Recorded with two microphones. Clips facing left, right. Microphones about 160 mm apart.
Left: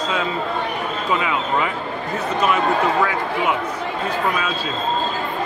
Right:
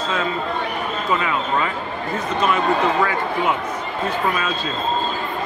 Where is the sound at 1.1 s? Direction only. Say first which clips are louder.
Even; 10° left (ahead or behind).